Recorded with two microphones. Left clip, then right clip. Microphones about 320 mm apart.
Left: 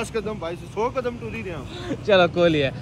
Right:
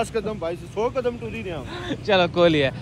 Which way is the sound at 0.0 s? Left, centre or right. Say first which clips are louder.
Right 2 dB; centre.